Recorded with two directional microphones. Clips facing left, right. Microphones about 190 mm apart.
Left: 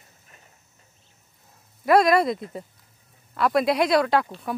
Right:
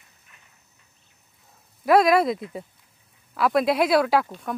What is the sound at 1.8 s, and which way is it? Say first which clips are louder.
Speech: even; centre (ahead or behind).